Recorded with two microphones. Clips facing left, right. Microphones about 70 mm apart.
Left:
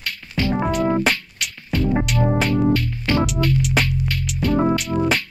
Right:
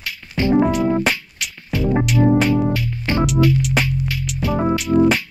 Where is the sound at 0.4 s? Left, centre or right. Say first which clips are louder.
Right 3 dB; right.